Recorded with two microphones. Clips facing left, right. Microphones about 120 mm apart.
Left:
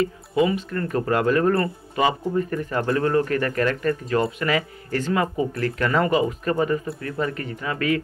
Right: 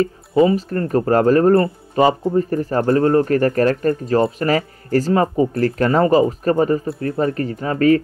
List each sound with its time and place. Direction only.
0.0 s speech: 35° right (ahead or behind)